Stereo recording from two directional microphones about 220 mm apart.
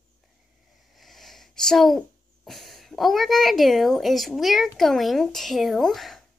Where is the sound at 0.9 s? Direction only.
Centre (ahead or behind).